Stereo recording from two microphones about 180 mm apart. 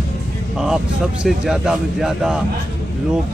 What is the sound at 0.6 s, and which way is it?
Speech, centre (ahead or behind).